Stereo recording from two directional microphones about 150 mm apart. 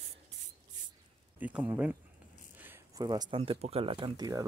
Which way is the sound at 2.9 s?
25° right (ahead or behind).